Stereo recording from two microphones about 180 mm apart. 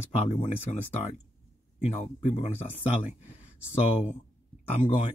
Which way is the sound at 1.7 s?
40° left (ahead or behind).